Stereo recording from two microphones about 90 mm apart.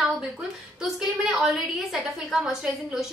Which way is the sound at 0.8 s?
5° right (ahead or behind).